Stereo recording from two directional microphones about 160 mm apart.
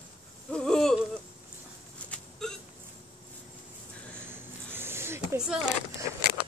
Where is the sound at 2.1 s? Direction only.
5° left (ahead or behind).